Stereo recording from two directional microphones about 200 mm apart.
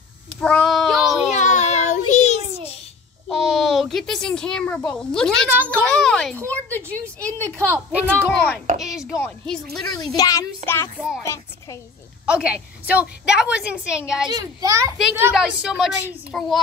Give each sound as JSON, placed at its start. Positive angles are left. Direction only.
{"t": 0.4, "sound": "child singing", "side_deg": 5}
{"t": 1.4, "sound": "child singing", "side_deg": 35}
{"t": 3.3, "sound": "a child's voice", "side_deg": 0}
{"t": 7.5, "sound": "a child's voice", "side_deg": -10}
{"t": 9.1, "sound": "a child's voice", "side_deg": 10}
{"t": 12.3, "sound": "a woman's voice", "side_deg": -5}
{"t": 14.3, "sound": "a child's voice", "side_deg": -15}
{"t": 15.0, "sound": "a woman's voice", "side_deg": 0}